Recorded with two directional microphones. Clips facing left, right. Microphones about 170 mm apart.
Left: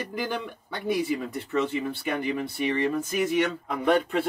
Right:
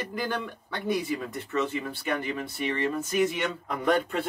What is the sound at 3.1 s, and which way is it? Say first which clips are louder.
Speech: left 2 dB; 5° left (ahead or behind).